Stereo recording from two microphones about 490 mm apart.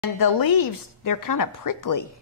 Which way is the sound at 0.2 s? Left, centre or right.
Left.